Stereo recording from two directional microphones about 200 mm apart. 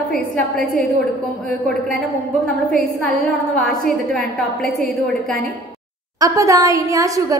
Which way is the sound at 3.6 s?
Centre (ahead or behind).